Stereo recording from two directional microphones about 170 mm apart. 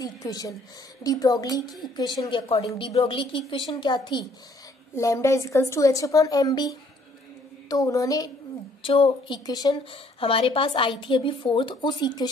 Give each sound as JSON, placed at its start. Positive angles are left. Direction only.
{"t": 0.0, "sound": "a woman's voice", "side_deg": 20}
{"t": 8.8, "sound": "a woman's voice", "side_deg": 30}